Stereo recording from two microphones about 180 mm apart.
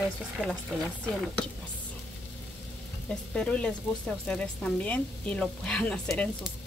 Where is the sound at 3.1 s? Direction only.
5° left (ahead or behind).